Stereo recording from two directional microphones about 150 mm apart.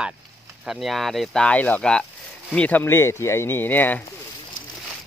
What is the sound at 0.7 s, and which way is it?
Speech, centre (ahead or behind).